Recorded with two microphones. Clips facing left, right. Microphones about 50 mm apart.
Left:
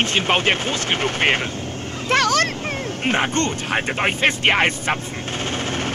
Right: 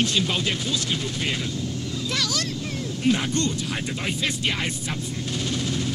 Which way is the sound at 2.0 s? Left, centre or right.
Left.